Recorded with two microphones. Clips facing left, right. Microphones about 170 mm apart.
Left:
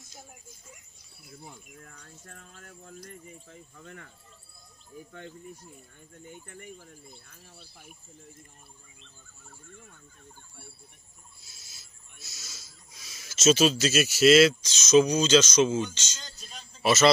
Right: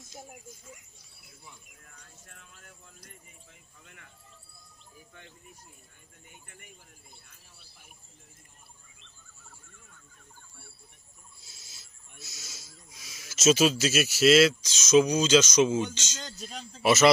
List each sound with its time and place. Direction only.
1.4 s speech: 50° left (ahead or behind)
6.4 s speech: 45° left (ahead or behind)
12.2 s a man's voice: 15° right (ahead or behind)
16.2 s speech: 65° right (ahead or behind)
16.8 s a man's voice: 15° right (ahead or behind)